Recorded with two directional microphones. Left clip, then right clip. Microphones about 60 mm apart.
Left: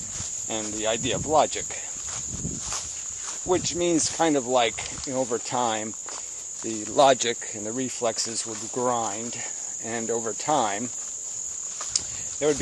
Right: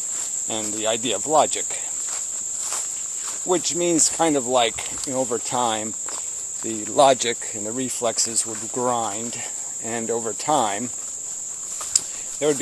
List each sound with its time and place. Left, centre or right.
0.5 s speech: centre
3.4 s cricket: centre
5.1 s speech: centre
7.0 s speech: left; by 10.9 s centre
11.9 s cricket: centre